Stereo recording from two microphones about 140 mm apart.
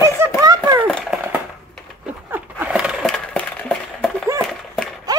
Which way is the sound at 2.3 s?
10° right (ahead or behind).